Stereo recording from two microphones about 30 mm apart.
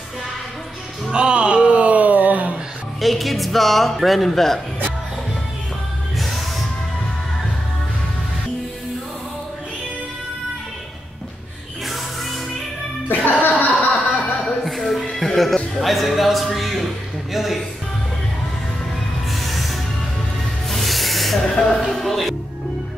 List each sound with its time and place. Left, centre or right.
1.1 s a sound: right
3.0 s speech: centre
13.1 s chuckle: left
14.6 s music: centre
15.8 s speech: centre
16.5 s a sound: centre
17.3 s music: centre
19.4 s music: centre
21.4 s spray: centre
22.0 s music: centre